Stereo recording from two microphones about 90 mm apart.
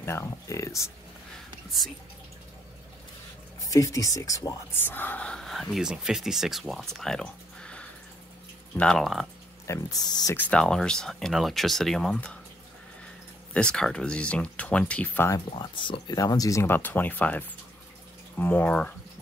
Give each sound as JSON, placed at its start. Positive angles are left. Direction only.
{"t": 0.0, "sound": "speech", "side_deg": 30}
{"t": 3.6, "sound": "speech", "side_deg": 40}
{"t": 4.7, "sound": "speech", "side_deg": 20}
{"t": 5.5, "sound": "speech", "side_deg": 0}
{"t": 9.7, "sound": "speech", "side_deg": 40}
{"t": 10.3, "sound": "speech", "side_deg": 10}
{"t": 13.5, "sound": "speech", "side_deg": 10}
{"t": 15.5, "sound": "speech", "side_deg": 65}
{"t": 16.1, "sound": "speech", "side_deg": 45}
{"t": 16.6, "sound": "speech", "side_deg": 20}